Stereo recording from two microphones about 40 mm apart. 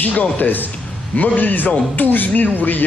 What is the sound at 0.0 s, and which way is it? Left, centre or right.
A man's voice, left.